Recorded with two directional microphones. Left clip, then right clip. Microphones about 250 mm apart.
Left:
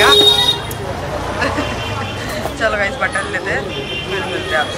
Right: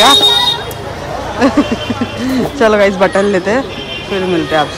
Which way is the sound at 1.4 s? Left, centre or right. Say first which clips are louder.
Right 7 dB; centre.